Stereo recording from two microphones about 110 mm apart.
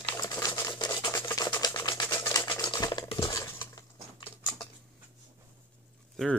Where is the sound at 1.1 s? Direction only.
30° left (ahead or behind).